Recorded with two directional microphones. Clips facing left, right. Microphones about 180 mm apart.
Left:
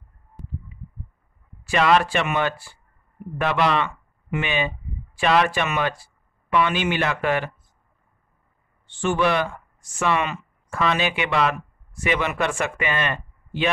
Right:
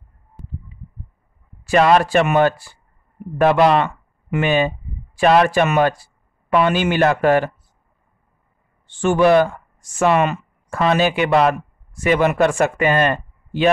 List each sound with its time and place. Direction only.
1.6 s speech: 40° right (ahead or behind)
8.8 s speech: 45° right (ahead or behind)